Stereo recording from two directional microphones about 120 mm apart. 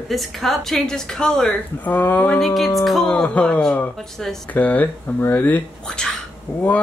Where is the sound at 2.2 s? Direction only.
5° left (ahead or behind).